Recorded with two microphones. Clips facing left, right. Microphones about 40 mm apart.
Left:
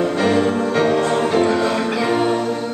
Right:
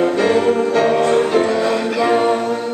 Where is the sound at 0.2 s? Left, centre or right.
Centre.